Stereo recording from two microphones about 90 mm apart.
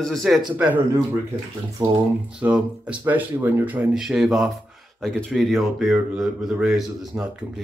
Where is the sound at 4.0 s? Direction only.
5° right (ahead or behind).